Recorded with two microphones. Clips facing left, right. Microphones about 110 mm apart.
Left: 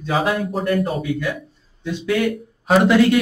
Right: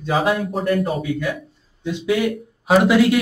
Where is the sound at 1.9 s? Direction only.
15° right (ahead or behind).